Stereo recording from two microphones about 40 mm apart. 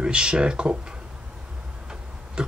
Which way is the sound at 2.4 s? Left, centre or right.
Right.